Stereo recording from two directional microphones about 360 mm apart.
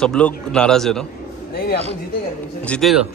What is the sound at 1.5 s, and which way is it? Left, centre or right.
Speech, left.